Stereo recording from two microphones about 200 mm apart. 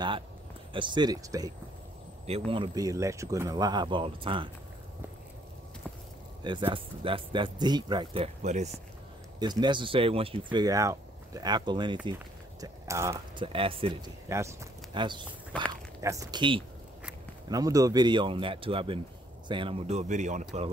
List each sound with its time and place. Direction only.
0.7 s speech: 20° right (ahead or behind)
2.5 s speech: 20° right (ahead or behind)
6.4 s speech: 25° right (ahead or behind)
9.4 s speech: 20° right (ahead or behind)
12.1 s a sound: 20° right (ahead or behind)
13.5 s speech: 25° right (ahead or behind)
14.3 s speech: 15° right (ahead or behind); by 20.7 s 35° right (ahead or behind)